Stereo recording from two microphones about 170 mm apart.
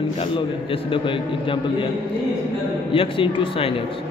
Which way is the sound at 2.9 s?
30° left (ahead or behind).